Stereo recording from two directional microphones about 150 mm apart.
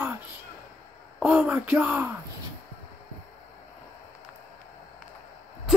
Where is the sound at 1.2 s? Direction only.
10° right (ahead or behind).